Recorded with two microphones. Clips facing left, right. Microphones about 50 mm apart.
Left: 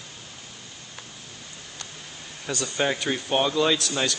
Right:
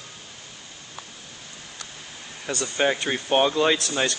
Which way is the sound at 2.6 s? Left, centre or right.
Centre.